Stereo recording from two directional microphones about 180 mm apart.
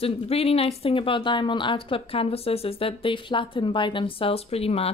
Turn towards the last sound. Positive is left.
turn(degrees=35)  # may be behind; listen again after turning